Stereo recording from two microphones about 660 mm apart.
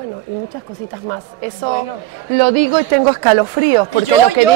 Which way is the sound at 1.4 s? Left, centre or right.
Right.